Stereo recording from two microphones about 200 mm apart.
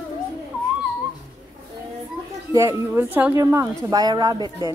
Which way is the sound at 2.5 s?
15° right (ahead or behind).